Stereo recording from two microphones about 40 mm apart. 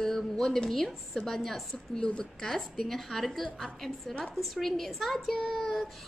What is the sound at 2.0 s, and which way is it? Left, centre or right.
Speech, centre.